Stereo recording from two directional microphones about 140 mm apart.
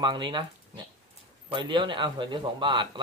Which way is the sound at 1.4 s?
35° right (ahead or behind).